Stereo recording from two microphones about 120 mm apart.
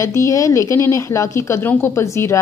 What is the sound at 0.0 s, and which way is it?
Speech, 25° left (ahead or behind).